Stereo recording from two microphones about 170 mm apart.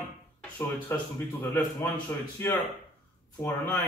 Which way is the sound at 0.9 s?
15° left (ahead or behind).